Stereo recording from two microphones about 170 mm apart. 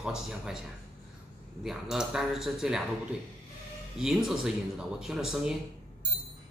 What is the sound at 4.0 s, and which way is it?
Speech, 5° right (ahead or behind).